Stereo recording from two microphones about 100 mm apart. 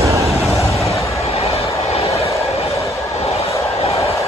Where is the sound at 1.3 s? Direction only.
90° left.